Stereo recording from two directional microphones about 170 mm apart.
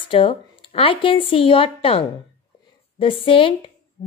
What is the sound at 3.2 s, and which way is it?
Speech, 30° left (ahead or behind).